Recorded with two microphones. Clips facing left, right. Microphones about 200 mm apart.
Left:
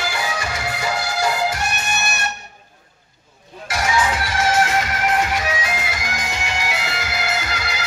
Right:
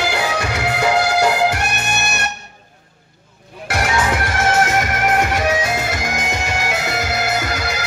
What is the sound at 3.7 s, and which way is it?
Music, 60° right (ahead or behind).